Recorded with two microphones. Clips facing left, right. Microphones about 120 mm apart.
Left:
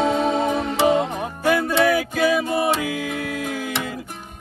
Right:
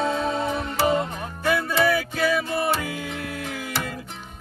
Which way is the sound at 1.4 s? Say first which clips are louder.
Left 3 dB; centre (ahead or behind).